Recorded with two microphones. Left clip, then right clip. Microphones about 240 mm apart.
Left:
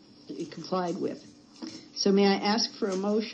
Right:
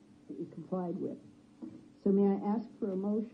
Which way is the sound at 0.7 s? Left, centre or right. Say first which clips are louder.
Left 8 dB; left.